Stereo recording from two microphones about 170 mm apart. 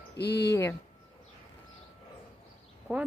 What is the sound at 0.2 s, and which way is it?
Speech, 75° left (ahead or behind).